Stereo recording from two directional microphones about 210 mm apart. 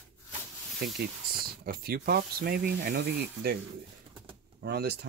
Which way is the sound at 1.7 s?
45° right (ahead or behind).